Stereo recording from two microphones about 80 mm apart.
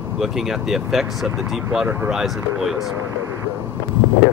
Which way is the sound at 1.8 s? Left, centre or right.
Right.